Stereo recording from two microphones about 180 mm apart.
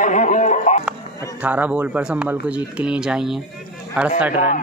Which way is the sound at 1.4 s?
10° right (ahead or behind).